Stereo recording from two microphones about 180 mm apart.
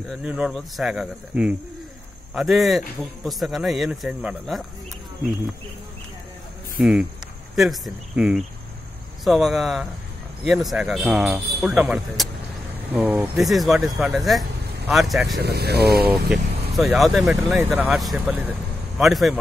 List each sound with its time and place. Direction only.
0.1 s speech: 5° right (ahead or behind)
6.8 s speech: 5° right (ahead or behind)
15.4 s speech: 65° right (ahead or behind)
16.1 s speech: 5° right (ahead or behind)